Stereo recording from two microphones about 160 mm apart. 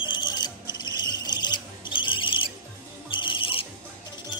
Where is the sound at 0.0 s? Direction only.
30° left (ahead or behind).